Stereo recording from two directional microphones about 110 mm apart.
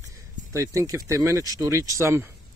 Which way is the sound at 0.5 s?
30° right (ahead or behind).